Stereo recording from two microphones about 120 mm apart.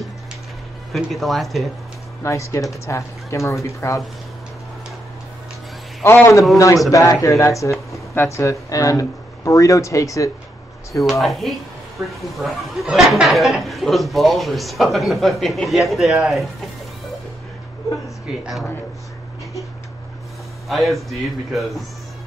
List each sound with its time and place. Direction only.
0.9 s speech: centre (ahead or behind)
2.2 s speech: 25° left (ahead or behind)
6.0 s speech: 25° left (ahead or behind)
11.1 s speech: centre (ahead or behind)
18.4 s speech: centre (ahead or behind)
20.6 s speech: centre (ahead or behind)